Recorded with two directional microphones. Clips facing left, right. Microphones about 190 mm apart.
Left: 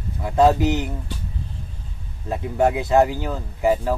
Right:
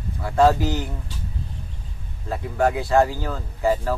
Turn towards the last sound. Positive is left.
turn(degrees=15)  # may be behind; listen again after turning